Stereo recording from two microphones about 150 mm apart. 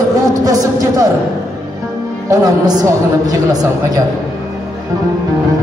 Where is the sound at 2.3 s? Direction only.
20° right (ahead or behind).